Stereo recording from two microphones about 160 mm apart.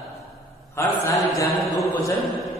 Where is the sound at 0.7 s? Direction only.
15° left (ahead or behind).